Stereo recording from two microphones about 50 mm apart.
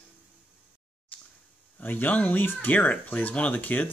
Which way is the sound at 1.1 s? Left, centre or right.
Left.